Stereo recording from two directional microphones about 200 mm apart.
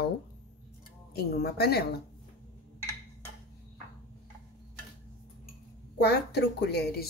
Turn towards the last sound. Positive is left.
turn(degrees=55)  # may be behind; listen again after turning